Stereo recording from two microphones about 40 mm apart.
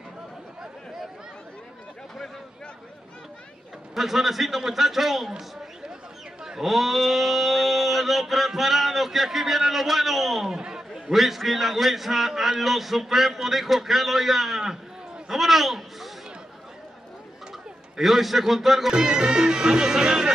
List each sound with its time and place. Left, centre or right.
3.9 s a man's voice: centre
6.4 s sheep: centre
11.1 s a man's voice: centre
15.2 s a sound: centre
17.5 s speech: centre
18.9 s speech: centre